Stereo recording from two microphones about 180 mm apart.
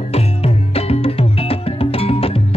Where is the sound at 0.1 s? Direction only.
35° left (ahead or behind).